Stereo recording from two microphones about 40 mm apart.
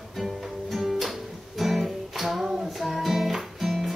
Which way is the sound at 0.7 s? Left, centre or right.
Centre.